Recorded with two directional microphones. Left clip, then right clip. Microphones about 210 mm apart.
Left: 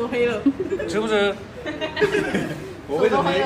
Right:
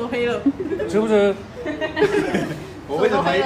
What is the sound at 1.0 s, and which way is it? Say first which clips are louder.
Speech: right 4 dB; 40° right (ahead or behind).